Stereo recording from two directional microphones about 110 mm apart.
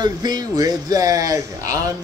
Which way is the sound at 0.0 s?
40° right (ahead or behind).